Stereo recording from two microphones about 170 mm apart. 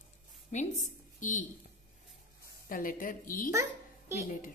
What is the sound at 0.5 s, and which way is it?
Speech, 45° left (ahead or behind).